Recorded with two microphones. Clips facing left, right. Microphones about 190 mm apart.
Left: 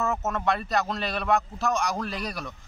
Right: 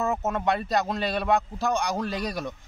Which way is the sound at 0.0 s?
15° right (ahead or behind).